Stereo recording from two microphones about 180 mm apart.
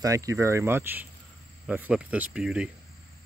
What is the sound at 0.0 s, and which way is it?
Speech, 20° right (ahead or behind).